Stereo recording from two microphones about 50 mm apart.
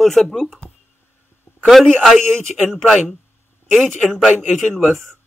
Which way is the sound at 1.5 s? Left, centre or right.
Left.